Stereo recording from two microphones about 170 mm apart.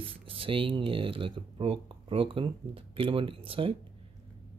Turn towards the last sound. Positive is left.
turn(degrees=-30)  # may be behind; listen again after turning